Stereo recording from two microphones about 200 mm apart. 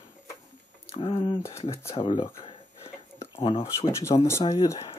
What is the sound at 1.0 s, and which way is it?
Speech, 30° left (ahead or behind).